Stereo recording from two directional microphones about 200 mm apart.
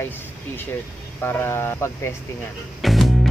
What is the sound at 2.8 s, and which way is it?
Music, centre (ahead or behind).